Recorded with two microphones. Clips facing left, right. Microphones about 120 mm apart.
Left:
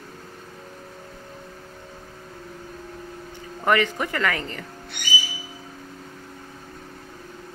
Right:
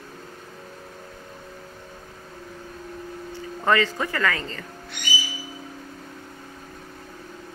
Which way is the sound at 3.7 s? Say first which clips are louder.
Even; 20° left (ahead or behind).